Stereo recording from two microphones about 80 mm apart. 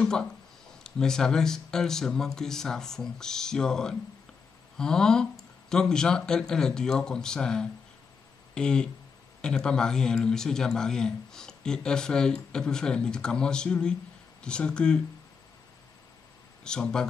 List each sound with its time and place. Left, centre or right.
0.0 s a man's voice: centre
16.6 s a man's voice: centre